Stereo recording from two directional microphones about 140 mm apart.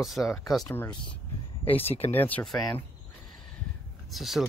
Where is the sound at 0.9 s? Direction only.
35° left (ahead or behind).